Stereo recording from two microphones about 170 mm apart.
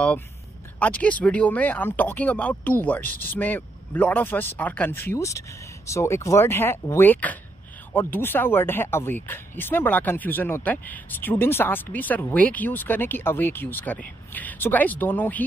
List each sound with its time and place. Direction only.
0.7 s speech: 10° left (ahead or behind)